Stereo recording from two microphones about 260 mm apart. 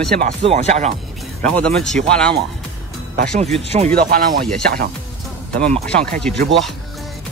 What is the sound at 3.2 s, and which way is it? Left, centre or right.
Speech, right.